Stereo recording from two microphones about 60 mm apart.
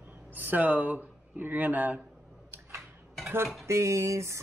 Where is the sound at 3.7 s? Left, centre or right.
Right.